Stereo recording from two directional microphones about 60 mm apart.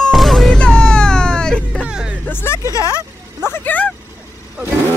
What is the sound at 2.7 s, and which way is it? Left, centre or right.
Speech, left.